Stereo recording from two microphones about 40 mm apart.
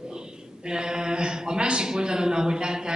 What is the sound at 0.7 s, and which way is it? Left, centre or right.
A man's voice, right.